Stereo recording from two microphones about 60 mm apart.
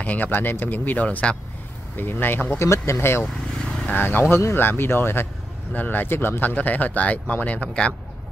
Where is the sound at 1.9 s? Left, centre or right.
Left.